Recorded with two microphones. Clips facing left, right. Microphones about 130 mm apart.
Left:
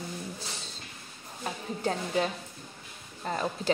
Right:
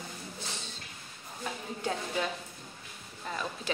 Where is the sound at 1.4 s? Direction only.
40° left (ahead or behind).